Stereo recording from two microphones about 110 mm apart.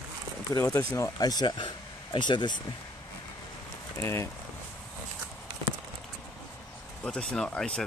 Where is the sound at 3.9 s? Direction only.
25° left (ahead or behind).